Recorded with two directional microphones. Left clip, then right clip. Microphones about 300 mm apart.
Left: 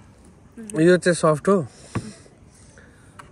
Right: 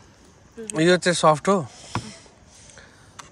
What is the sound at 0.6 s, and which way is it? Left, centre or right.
A man's voice, centre.